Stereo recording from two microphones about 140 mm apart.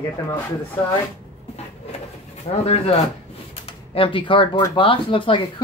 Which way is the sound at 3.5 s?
45° left (ahead or behind).